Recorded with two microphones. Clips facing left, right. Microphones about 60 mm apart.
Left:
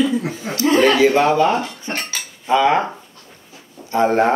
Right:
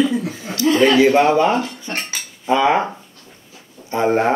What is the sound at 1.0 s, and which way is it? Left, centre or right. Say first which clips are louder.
Speech: right 1 dB; centre.